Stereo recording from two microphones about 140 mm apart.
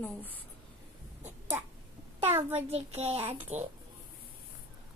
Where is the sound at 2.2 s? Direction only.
15° right (ahead or behind).